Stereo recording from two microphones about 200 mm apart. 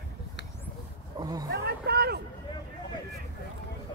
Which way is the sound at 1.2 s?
20° right (ahead or behind).